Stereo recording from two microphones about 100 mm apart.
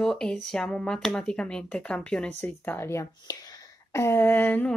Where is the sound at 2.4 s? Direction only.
20° left (ahead or behind).